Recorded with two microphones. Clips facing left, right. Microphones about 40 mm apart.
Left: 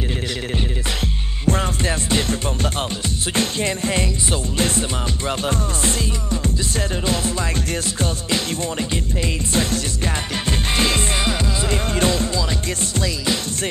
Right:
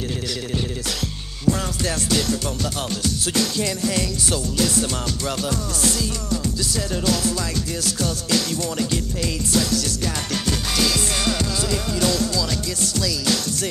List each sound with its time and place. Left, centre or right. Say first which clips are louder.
1.5 s music: left 2 dB; left